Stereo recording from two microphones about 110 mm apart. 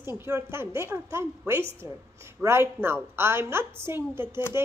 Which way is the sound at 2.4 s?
25° right (ahead or behind).